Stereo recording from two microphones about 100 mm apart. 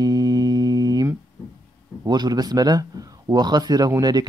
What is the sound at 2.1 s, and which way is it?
Speech, 45° right (ahead or behind).